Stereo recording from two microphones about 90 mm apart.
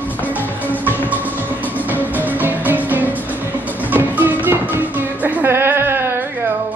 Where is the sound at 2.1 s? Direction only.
20° right (ahead or behind).